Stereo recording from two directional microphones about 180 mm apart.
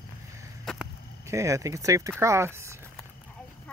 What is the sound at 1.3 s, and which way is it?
Speech, 15° right (ahead or behind).